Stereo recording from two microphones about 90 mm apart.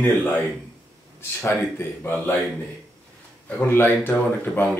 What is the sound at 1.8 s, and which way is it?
Speech, 25° left (ahead or behind).